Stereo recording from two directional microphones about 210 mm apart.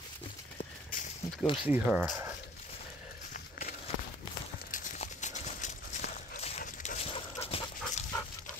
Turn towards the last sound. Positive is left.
turn(degrees=30)  # may be behind; listen again after turning